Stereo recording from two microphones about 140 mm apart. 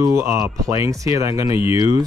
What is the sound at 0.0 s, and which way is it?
Speech, 20° right (ahead or behind).